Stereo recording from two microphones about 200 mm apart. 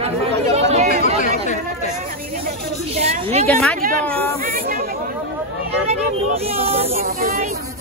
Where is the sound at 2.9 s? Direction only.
30° right (ahead or behind).